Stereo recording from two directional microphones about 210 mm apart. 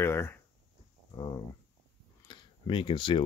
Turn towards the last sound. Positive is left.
turn(degrees=25)  # may be behind; listen again after turning